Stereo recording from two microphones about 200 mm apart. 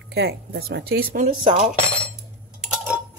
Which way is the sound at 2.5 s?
5° right (ahead or behind).